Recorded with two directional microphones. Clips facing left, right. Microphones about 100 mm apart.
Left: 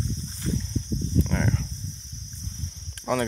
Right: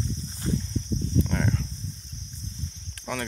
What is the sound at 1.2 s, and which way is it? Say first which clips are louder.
Cricket: left 1 dB; 5° right (ahead or behind).